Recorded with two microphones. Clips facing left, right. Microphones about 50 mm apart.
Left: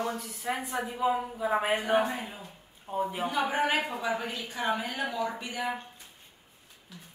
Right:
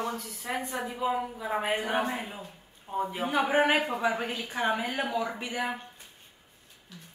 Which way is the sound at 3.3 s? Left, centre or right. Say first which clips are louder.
Right 5 dB; right.